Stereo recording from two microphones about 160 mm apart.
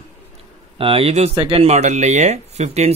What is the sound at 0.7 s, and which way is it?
Speech, 35° right (ahead or behind).